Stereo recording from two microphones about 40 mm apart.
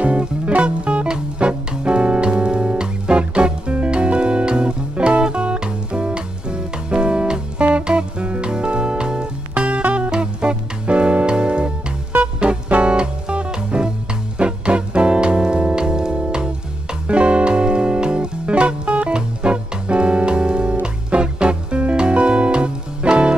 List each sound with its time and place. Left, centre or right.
0.0 s music: right
9.6 s music: right
10.1 s music: right